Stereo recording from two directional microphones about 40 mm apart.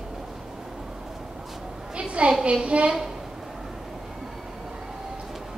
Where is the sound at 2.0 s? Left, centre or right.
Right.